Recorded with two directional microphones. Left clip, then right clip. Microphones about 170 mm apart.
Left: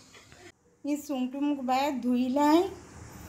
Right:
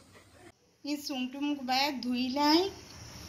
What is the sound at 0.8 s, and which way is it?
A woman's voice, 45° left (ahead or behind).